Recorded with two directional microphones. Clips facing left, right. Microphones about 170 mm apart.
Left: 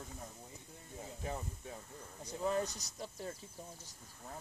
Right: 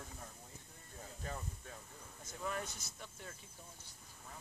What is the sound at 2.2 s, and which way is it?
Speech, 25° left (ahead or behind).